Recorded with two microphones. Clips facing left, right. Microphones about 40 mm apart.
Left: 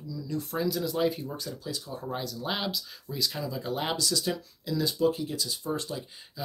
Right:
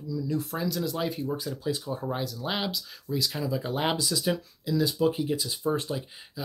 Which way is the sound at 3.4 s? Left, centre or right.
Centre.